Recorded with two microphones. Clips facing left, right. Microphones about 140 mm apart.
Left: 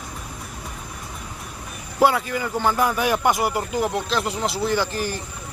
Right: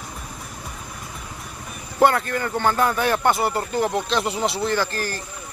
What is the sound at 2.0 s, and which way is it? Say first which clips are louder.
Speech: right 1 dB; 5° left (ahead or behind).